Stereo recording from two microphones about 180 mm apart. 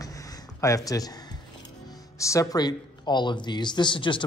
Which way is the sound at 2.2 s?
15° left (ahead or behind).